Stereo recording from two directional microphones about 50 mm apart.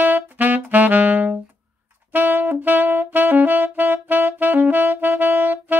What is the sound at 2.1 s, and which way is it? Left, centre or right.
Saxophone, right.